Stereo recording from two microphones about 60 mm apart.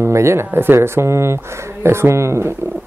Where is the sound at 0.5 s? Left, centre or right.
Right.